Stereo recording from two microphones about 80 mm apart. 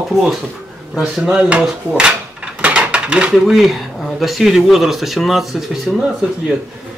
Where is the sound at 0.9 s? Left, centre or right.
Centre.